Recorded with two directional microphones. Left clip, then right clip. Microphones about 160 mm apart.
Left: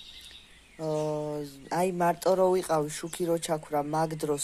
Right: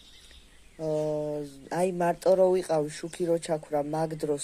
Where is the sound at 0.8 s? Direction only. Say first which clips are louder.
Right 1 dB; 20° left (ahead or behind).